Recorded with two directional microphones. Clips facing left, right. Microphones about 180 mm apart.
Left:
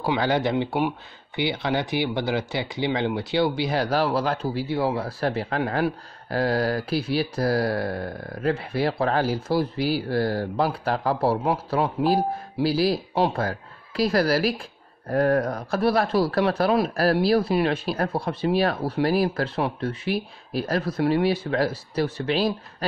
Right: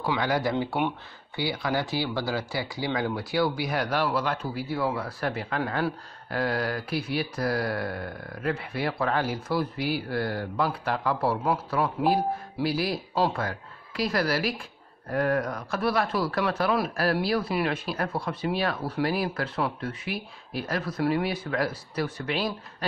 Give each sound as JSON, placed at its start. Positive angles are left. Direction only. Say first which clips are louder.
{"t": 0.0, "sound": "speech", "louder": "left 3 dB", "side_deg": 30}